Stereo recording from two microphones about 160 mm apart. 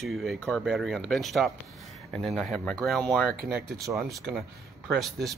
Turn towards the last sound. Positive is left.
turn(degrees=0)  # may be behind; listen again after turning